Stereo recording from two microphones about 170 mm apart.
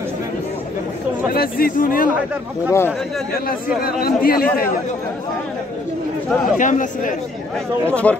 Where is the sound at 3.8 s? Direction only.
60° left (ahead or behind).